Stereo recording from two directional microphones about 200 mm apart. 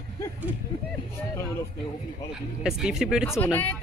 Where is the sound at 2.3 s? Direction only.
Centre (ahead or behind).